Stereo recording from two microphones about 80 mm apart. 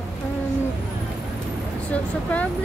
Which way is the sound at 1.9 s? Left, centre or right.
Centre.